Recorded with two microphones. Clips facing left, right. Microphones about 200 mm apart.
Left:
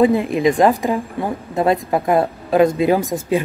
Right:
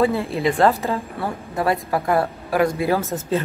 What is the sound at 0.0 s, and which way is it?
A woman's voice, 15° left (ahead or behind).